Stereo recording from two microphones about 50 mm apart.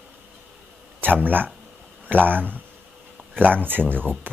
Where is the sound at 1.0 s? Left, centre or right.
Right.